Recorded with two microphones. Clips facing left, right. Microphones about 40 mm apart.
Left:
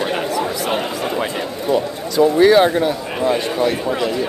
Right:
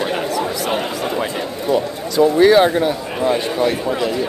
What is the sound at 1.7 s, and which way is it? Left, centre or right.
Speech, centre.